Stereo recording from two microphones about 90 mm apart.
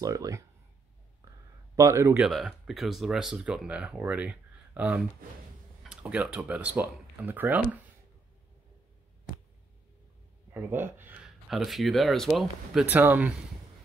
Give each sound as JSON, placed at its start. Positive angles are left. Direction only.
{"t": 0.0, "sound": "speech", "side_deg": -35}
{"t": 1.2, "sound": "a sound", "side_deg": -45}
{"t": 1.8, "sound": "speech", "side_deg": -35}
{"t": 2.2, "sound": "speech", "side_deg": -5}
{"t": 10.5, "sound": "speech", "side_deg": -25}
{"t": 11.2, "sound": "speech", "side_deg": 0}
{"t": 12.8, "sound": "speech", "side_deg": -20}